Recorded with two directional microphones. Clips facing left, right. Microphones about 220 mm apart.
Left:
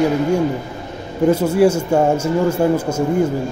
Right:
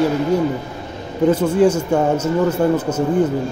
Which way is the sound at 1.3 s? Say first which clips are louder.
Left 1 dB; 10° left (ahead or behind).